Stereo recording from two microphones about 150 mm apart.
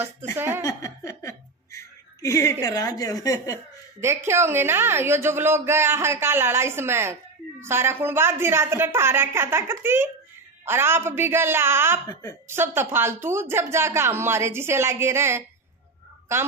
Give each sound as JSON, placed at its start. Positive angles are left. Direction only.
{"t": 0.6, "sound": "chuckle", "side_deg": 20}
{"t": 2.6, "sound": "speech", "side_deg": 25}
{"t": 4.3, "sound": "speech", "side_deg": -15}
{"t": 12.1, "sound": "speech", "side_deg": 20}
{"t": 12.4, "sound": "speech", "side_deg": -15}